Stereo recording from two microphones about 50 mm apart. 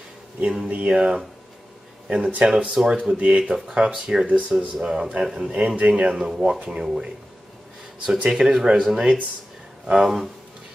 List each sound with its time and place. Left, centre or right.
0.4 s speech: centre
0.7 s speech: right
3.0 s speech: right
8.3 s speech: centre